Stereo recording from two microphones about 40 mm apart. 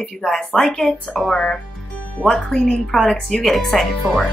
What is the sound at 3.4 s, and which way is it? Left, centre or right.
Speech, centre.